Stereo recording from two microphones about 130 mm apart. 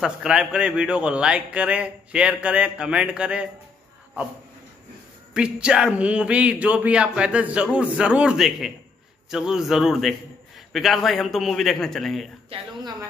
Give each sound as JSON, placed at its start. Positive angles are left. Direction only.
{"t": 0.0, "sound": "a man's voice", "side_deg": -5}
{"t": 5.3, "sound": "a man's voice", "side_deg": -5}
{"t": 12.5, "sound": "speech", "side_deg": -50}